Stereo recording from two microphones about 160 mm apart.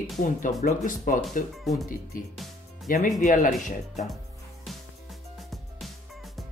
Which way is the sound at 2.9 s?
55° left (ahead or behind).